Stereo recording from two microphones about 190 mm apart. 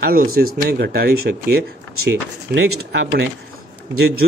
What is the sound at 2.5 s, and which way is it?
Speech, 80° right.